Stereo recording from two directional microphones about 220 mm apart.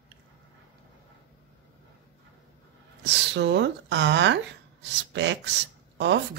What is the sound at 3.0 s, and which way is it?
Speech, 55° right (ahead or behind).